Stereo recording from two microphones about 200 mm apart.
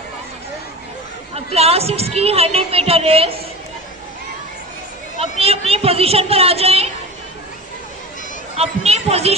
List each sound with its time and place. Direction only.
1.3 s a woman's voice: 30° right (ahead or behind)
5.2 s speech: 30° right (ahead or behind)
8.5 s a woman's voice: 30° right (ahead or behind)